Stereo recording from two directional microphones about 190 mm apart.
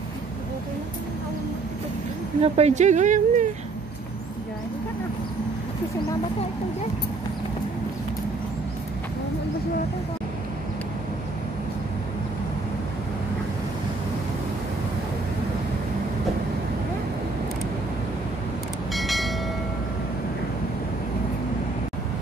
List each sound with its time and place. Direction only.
2.4 s speech: 35° right (ahead or behind)
18.9 s train: centre (ahead or behind)